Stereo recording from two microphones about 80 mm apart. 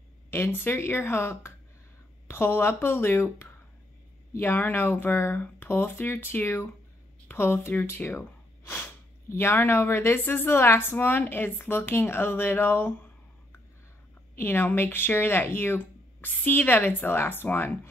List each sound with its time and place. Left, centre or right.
0.3 s speech: left